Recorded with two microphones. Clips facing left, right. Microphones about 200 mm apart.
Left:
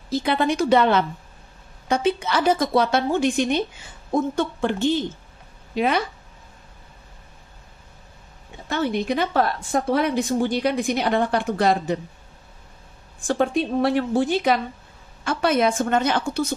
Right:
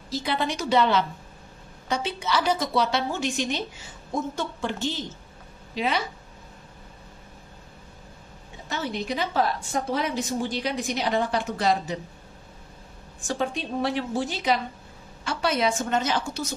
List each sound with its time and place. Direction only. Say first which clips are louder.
0.1 s a woman's voice: left 6 dB; 55° left (ahead or behind)
8.6 s a woman's voice: left 7 dB; 55° left (ahead or behind)
13.3 s a woman's voice: left 7 dB; 55° left (ahead or behind)